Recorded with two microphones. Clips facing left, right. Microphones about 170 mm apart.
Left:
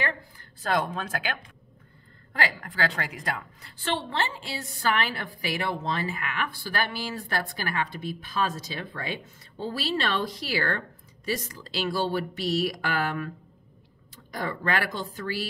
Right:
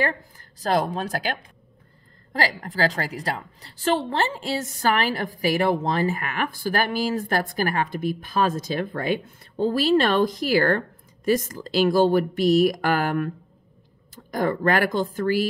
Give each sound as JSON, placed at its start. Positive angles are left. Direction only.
{"t": 0.0, "sound": "a woman's voice", "side_deg": -40}